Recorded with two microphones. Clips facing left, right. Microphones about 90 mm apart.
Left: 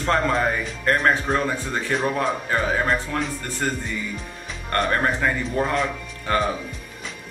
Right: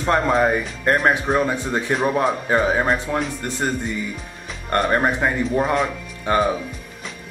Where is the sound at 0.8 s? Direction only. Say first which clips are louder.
Right 2 dB; 15° right (ahead or behind).